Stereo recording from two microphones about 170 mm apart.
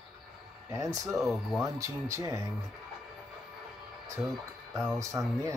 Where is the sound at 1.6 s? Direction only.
20° right (ahead or behind).